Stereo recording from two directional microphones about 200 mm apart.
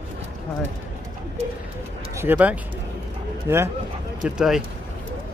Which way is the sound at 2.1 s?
10° right (ahead or behind).